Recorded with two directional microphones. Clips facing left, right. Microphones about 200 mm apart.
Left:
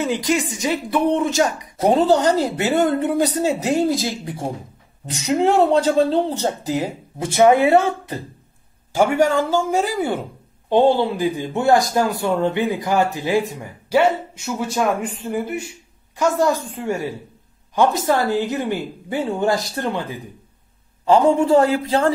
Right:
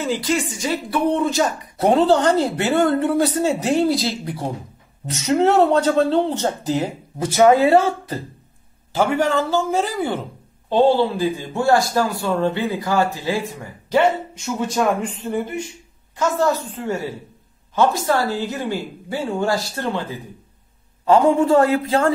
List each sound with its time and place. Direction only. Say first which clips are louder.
0.0 s a man's voice: left 1 dB; 15° left (ahead or behind)
5.7 s speech: even; 30° left (ahead or behind)
6.4 s a man's voice: right 1 dB; 15° left (ahead or behind)
7.2 s a woman's voice: even; 25° left (ahead or behind)
8.9 s a man's voice: left 2 dB; 10° left (ahead or behind)
13.9 s a man's voice: even; 10° left (ahead or behind)
21.0 s a woman's voice: even; 30° left (ahead or behind)